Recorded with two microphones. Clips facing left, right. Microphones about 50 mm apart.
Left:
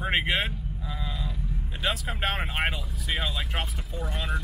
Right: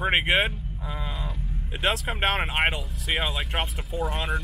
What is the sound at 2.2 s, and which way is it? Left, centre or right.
Speech, right.